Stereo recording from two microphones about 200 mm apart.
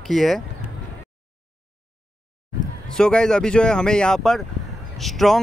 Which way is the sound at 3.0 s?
5° left (ahead or behind).